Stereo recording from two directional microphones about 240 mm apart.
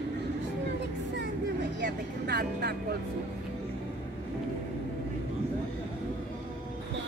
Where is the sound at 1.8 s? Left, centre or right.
Right.